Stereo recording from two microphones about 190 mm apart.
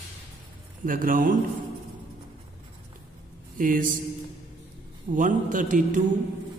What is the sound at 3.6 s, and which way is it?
Speech, 45° right (ahead or behind).